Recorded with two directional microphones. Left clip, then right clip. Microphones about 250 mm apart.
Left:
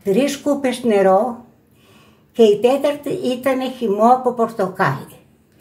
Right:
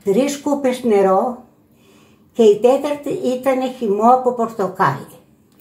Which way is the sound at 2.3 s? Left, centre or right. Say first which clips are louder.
Right 1 dB; centre.